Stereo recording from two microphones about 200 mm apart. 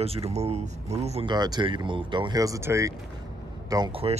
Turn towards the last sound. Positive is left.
turn(degrees=-30)  # may be behind; listen again after turning